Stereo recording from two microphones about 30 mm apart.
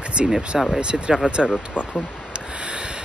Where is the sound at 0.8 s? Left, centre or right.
Right.